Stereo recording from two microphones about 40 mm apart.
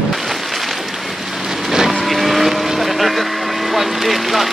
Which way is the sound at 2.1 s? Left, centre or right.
Centre.